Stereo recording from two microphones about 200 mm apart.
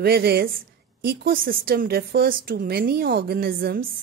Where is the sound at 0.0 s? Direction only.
50° right (ahead or behind).